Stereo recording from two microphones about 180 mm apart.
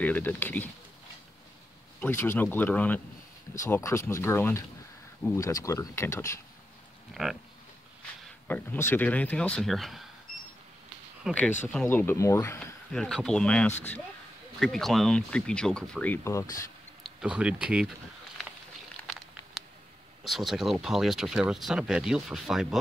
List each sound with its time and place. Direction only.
0.0 s speech: 10° left (ahead or behind)
2.0 s speech: 10° left (ahead or behind)
7.2 s speech: centre (ahead or behind)
8.5 s speech: 10° left (ahead or behind)
11.3 s speech: 5° right (ahead or behind)
11.7 s speech: 5° left (ahead or behind)
12.9 s speech: centre (ahead or behind)
17.0 s speech: 5° right (ahead or behind)
19.0 s a sound: 10° left (ahead or behind)
20.2 s speech: centre (ahead or behind)